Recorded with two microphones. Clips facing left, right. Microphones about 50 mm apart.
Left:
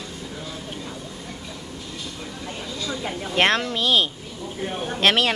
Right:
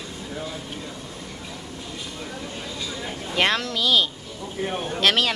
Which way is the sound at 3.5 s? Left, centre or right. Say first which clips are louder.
Left 1 dB; left.